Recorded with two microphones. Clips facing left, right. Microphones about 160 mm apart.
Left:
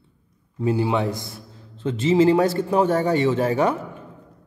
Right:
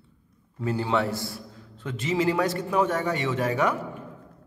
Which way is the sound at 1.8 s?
30° left (ahead or behind).